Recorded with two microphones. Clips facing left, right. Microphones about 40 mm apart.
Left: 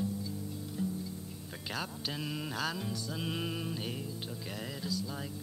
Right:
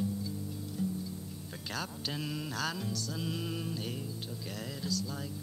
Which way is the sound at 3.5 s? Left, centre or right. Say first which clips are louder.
Even; centre.